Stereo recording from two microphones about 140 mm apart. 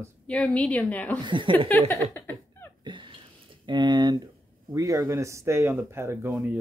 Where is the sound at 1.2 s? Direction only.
35° right (ahead or behind).